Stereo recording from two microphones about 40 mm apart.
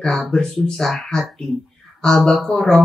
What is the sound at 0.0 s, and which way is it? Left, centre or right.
Speech, centre.